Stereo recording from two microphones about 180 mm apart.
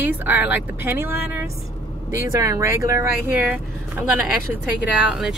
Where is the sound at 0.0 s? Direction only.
10° right (ahead or behind).